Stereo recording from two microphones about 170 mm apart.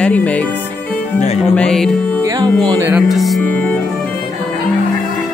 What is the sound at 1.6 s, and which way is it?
Music, 5° left (ahead or behind).